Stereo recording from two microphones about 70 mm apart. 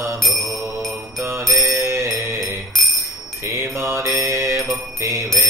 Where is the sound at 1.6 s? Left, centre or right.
Right.